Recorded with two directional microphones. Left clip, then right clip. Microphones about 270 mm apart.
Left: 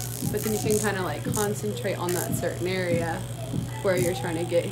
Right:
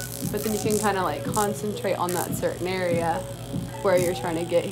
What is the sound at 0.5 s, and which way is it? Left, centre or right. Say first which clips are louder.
Speech: right 2 dB; centre.